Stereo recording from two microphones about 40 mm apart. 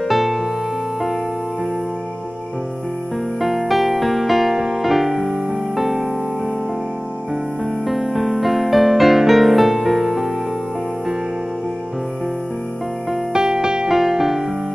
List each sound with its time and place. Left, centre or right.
0.1 s music: centre
3.3 s music: centre
7.8 s music: centre
13.3 s music: centre
13.8 s music: centre